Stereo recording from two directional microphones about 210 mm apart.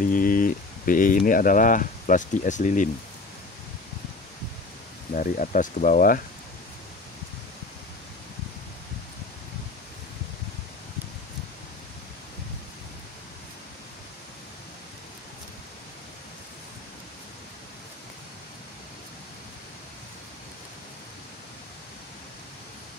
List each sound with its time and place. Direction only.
0.0 s speech: 40° left (ahead or behind)
5.1 s speech: 40° left (ahead or behind)